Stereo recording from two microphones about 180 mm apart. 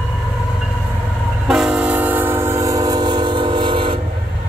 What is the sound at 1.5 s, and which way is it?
Train, 5° right (ahead or behind).